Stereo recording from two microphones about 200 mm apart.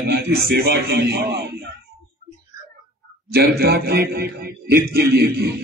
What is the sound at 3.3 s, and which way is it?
A man's voice, 55° right (ahead or behind).